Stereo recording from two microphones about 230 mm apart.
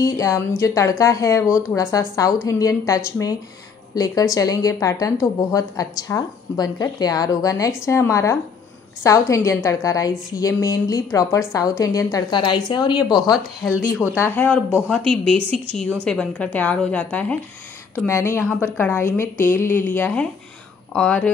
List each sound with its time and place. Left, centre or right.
0.0 s a woman's voice: centre